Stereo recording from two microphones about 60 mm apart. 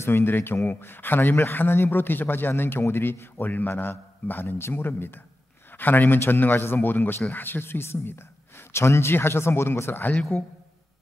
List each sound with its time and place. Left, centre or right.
0.0 s a man's voice: left